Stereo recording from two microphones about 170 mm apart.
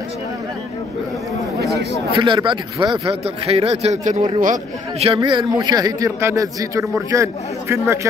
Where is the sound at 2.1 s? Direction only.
30° right (ahead or behind); by 5.1 s 45° right (ahead or behind).